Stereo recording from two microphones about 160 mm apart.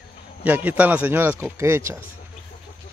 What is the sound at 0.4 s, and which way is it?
A man's voice, 10° right (ahead or behind).